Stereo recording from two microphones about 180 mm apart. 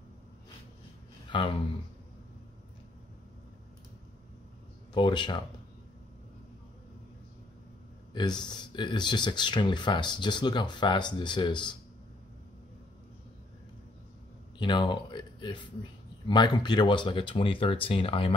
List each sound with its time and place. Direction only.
1.3 s speech: 30° left (ahead or behind)
4.9 s speech: 25° left (ahead or behind)
8.1 s speech: 25° left (ahead or behind)
14.6 s speech: 25° left (ahead or behind)